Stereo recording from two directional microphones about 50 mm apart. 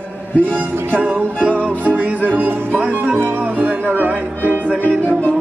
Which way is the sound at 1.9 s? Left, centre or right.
Right.